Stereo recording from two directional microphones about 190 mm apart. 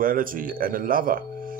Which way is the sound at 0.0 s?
45° right (ahead or behind).